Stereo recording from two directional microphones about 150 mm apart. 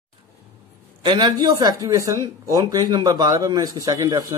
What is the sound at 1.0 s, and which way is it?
A man's voice, 30° right (ahead or behind).